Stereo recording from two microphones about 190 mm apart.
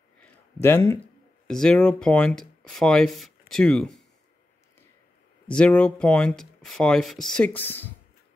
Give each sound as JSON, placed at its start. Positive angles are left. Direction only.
{"t": 0.2, "sound": "a sound", "side_deg": 10}
{"t": 1.5, "sound": "speech", "side_deg": 5}
{"t": 5.5, "sound": "speech", "side_deg": 5}